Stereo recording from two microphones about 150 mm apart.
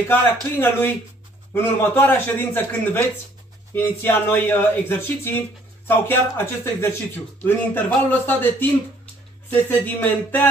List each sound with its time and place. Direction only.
0.1 s speech: 15° left (ahead or behind)